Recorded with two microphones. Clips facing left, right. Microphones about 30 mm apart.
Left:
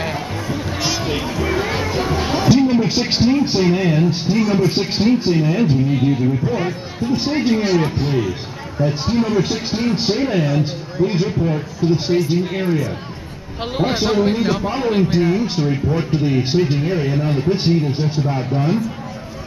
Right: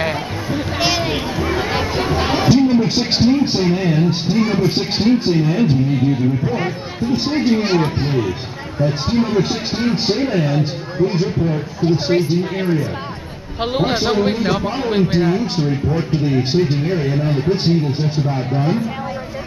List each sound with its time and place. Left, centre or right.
0.0 s music: centre
2.5 s speech: centre
7.6 s speech: right
15.7 s speech: centre